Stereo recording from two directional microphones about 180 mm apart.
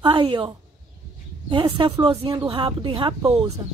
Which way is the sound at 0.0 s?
30° right (ahead or behind).